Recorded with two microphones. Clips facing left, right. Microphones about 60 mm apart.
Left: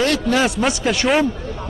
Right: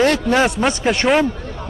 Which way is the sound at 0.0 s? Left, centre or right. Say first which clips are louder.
Right 2 dB; right.